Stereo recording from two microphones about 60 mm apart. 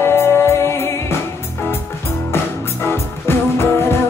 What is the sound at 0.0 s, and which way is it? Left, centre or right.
Music, left.